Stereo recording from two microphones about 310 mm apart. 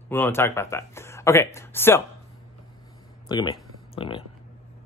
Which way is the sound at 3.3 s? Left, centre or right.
Centre.